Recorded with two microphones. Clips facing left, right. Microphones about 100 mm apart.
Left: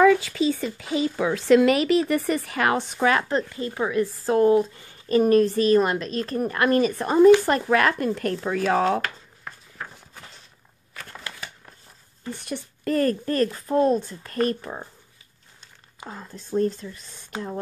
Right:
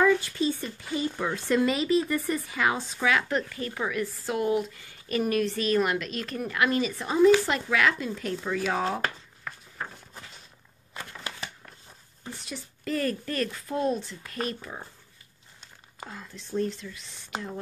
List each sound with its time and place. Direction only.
0.0 s speech: 85° left; by 3.1 s 65° left (ahead or behind)
3.1 s speech: 35° left (ahead or behind)
3.4 s speech: 25° left (ahead or behind); by 8.9 s 50° left (ahead or behind)
12.4 s speech: 55° left (ahead or behind)
16.1 s speech: 40° left (ahead or behind)